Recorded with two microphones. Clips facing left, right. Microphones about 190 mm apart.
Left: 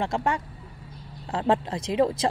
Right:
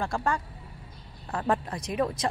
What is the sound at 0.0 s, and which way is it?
A woman's voice, 20° left (ahead or behind).